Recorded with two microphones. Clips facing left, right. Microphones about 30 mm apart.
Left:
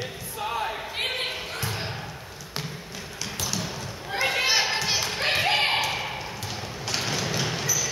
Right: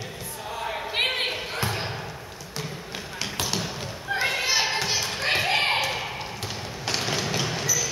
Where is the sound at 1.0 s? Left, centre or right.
Right.